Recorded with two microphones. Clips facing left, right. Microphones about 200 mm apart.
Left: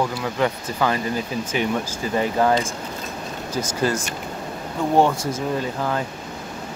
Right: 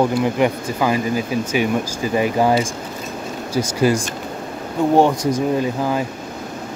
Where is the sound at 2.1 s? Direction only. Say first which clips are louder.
Right 3 dB; 15° right (ahead or behind).